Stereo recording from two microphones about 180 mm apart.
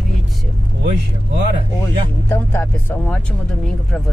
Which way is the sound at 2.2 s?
10° left (ahead or behind).